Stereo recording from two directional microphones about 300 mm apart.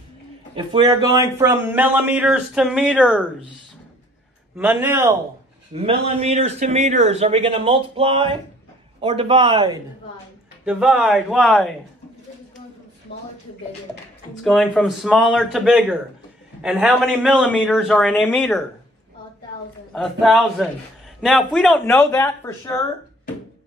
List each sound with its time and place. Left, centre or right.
0.6 s a man's voice: centre
4.6 s a man's voice: centre
5.7 s a man's voice: right
10.6 s a man's voice: centre
13.1 s speech: left
14.4 s a man's voice: centre
19.9 s a man's voice: centre